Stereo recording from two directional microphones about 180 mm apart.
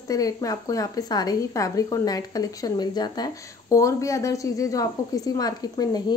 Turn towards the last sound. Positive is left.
turn(degrees=20)  # may be behind; listen again after turning